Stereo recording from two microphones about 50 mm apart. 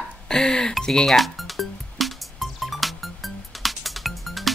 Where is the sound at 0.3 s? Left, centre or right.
Centre.